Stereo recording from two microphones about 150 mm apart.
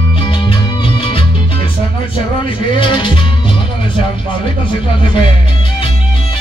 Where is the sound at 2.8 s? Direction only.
35° left (ahead or behind).